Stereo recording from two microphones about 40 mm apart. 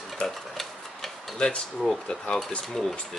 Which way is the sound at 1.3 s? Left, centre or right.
Left.